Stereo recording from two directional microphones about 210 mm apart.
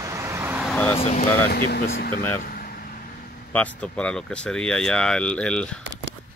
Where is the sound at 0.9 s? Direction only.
35° left (ahead or behind).